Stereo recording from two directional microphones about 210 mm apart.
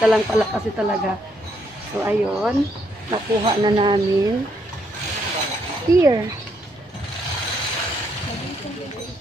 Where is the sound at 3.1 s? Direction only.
20° right (ahead or behind).